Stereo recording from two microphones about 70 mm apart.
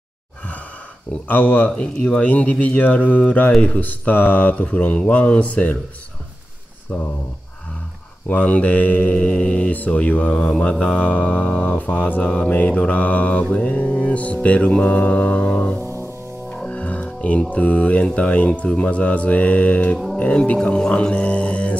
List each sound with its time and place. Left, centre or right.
1.3 s mantra: left
8.3 s mantra: centre
15.8 s music: right
16.5 s speech: centre